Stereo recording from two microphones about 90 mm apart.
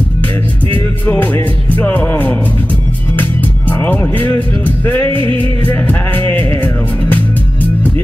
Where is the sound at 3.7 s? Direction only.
20° left (ahead or behind).